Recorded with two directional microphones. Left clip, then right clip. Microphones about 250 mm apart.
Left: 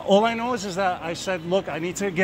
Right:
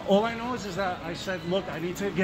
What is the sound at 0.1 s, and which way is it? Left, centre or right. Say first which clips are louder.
Speech: left 5 dB; left.